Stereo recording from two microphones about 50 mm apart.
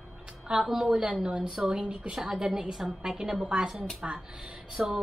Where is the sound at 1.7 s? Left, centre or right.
Right.